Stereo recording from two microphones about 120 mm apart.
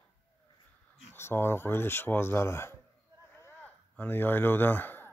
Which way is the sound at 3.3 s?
15° left (ahead or behind).